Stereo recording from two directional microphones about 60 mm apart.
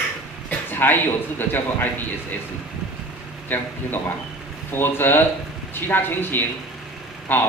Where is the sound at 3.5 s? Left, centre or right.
Left.